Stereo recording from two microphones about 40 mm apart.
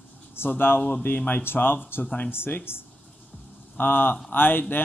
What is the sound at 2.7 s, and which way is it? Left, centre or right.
Speech, left.